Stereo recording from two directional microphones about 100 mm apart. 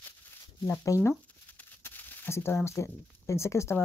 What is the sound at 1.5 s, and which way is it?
Speech, 20° left (ahead or behind).